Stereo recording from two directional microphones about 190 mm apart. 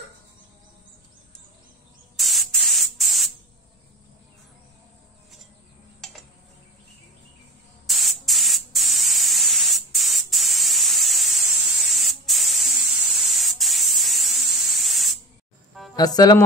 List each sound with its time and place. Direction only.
2.1 s spray: centre (ahead or behind)
7.8 s spray: centre (ahead or behind)
16.0 s speech: 20° left (ahead or behind)